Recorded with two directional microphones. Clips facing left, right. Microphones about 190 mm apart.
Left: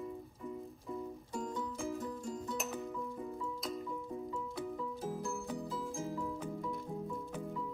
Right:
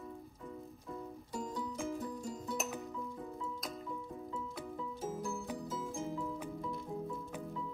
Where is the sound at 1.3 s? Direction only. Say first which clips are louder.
Even; 5° right (ahead or behind).